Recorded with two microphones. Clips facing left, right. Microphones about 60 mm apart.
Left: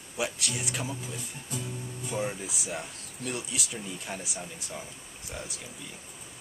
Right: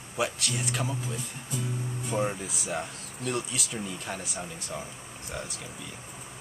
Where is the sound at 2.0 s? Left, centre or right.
Right.